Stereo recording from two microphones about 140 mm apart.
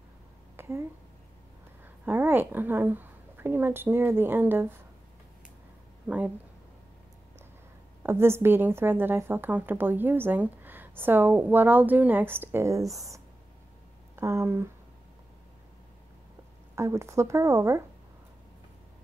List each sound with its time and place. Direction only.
0.6 s a sound: 20° right (ahead or behind)
2.0 s a woman's voice: 15° right (ahead or behind)
6.0 s speech: 10° right (ahead or behind)
8.0 s a woman's voice: 15° right (ahead or behind)
16.7 s a woman's voice: 20° right (ahead or behind)